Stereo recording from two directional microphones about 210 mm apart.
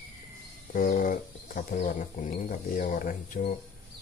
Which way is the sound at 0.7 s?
40° left (ahead or behind).